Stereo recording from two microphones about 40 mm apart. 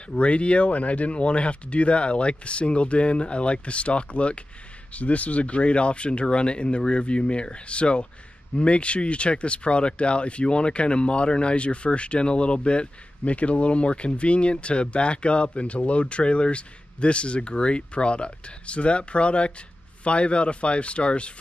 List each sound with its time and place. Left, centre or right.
0.1 s speech: left